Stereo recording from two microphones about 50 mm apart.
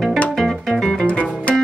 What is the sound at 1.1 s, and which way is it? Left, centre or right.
Music, left.